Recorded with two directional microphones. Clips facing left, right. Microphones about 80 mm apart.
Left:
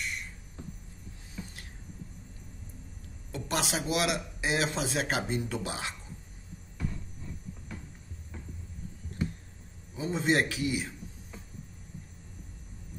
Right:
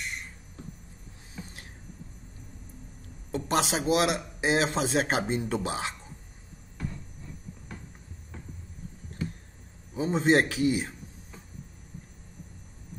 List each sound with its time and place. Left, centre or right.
3.3 s speech: right
9.9 s a man's voice: right